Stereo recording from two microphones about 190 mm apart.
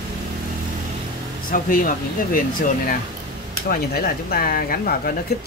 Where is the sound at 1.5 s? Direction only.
45° left (ahead or behind).